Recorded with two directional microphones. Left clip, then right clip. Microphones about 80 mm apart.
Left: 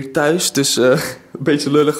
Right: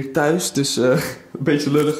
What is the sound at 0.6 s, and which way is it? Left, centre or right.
Speech, left.